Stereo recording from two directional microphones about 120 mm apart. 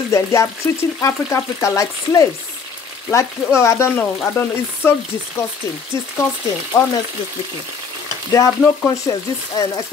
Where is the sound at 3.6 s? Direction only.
25° left (ahead or behind).